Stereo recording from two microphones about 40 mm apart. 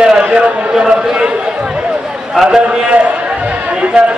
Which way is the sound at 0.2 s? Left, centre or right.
Right.